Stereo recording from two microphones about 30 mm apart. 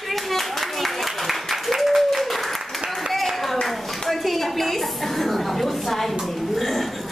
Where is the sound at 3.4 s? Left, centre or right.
Centre.